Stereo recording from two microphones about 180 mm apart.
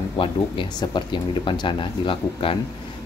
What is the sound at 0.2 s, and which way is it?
Speech, 25° left (ahead or behind).